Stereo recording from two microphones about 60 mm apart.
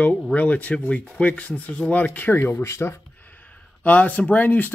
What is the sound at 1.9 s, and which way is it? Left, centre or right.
Speech, left.